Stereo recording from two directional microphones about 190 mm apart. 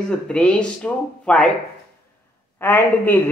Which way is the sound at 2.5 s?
10° left (ahead or behind).